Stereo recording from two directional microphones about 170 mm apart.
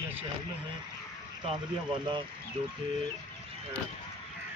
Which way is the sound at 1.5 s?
30° right (ahead or behind).